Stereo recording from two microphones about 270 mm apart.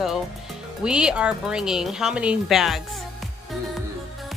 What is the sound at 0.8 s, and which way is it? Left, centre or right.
Speech, centre.